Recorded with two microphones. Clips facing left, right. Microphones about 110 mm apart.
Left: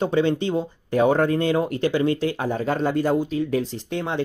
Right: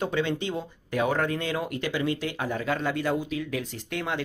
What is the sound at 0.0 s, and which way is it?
Speech, 35° left (ahead or behind).